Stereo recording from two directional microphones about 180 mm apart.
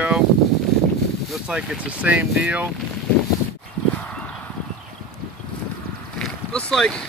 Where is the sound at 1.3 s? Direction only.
5° right (ahead or behind).